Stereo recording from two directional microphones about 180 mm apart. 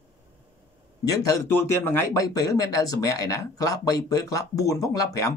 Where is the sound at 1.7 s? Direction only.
15° left (ahead or behind).